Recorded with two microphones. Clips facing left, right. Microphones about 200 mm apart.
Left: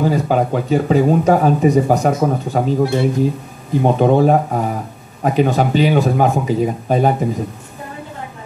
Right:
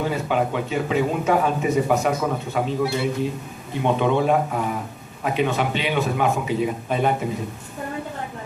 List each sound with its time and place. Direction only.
0.0 s speech: 40° left (ahead or behind)